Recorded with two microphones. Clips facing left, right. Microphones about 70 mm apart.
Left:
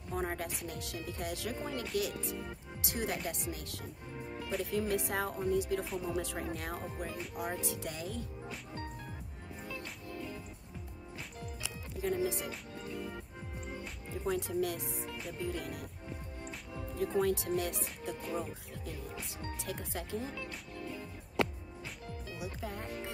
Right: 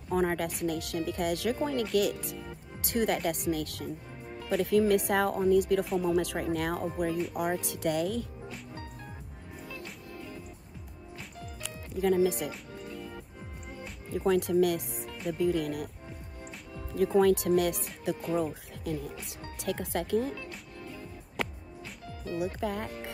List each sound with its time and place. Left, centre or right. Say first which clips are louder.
0.1 s speech: right 8 dB; right
2.0 s speech: right 7 dB; right
2.8 s speech: right 8 dB; right
4.5 s speech: right 9 dB; right
5.9 s speech: right 8 dB; right
7.3 s speech: right 6 dB; right
12.0 s speech: right 8 dB; right
14.2 s speech: right 9 dB; right
15.3 s speech: right 12 dB; right
17.0 s speech: right 8 dB; right
18.0 s speech: right 9 dB; right
19.6 s speech: right 11 dB; right
22.2 s speech: right 11 dB; right